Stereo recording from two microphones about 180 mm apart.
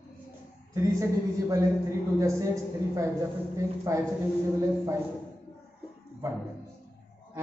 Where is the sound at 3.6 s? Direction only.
15° right (ahead or behind).